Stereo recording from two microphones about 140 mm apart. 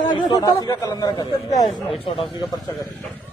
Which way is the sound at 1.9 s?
40° left (ahead or behind).